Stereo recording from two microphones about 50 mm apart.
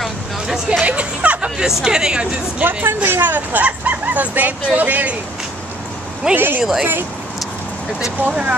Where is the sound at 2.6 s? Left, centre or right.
Right.